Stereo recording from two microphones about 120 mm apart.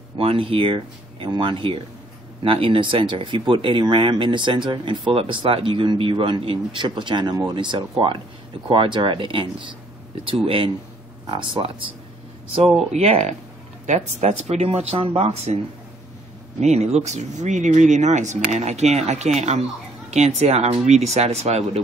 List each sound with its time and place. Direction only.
0.2 s speech: 50° right (ahead or behind)
12.9 s speech: 65° right (ahead or behind)